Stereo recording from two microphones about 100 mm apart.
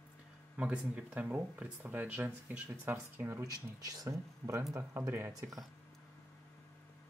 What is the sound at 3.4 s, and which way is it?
Speech, 35° right (ahead or behind).